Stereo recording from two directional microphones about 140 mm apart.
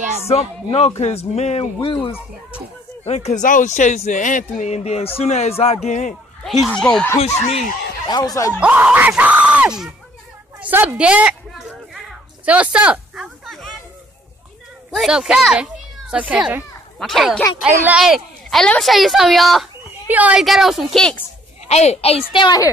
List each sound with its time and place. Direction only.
0.3 s speech: 50° left (ahead or behind)
3.4 s speech: 65° left (ahead or behind)
6.8 s speech: 5° left (ahead or behind)
7.2 s speech: 50° left (ahead or behind)
8.5 s speech: 10° right (ahead or behind)
10.6 s a sound: 15° right (ahead or behind); by 13.7 s centre (ahead or behind)
15.0 s a child's voice: 5° right (ahead or behind)
17.0 s a woman's voice: centre (ahead or behind)
17.6 s speech: 10° right (ahead or behind)
18.0 s a woman's voice: centre (ahead or behind)
20.1 s a woman's voice: 10° right (ahead or behind)
21.6 s speech: 50° left (ahead or behind); by 22.7 s 30° left (ahead or behind)